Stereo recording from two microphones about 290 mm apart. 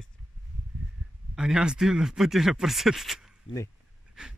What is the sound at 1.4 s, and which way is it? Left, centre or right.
Speech, centre.